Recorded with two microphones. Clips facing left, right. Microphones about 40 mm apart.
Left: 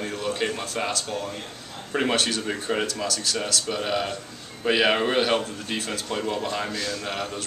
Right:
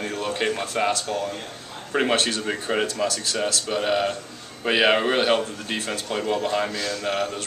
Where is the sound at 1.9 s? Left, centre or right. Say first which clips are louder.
Right 2 dB; centre.